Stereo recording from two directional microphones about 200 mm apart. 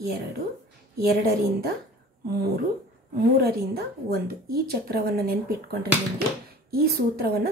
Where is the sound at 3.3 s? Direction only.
50° right (ahead or behind).